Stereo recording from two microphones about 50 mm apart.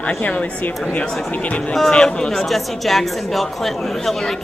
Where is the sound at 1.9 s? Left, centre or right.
Centre.